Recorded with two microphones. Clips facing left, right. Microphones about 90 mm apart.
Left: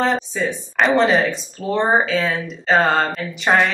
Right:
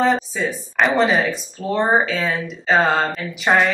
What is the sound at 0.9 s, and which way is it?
Speech, centre (ahead or behind).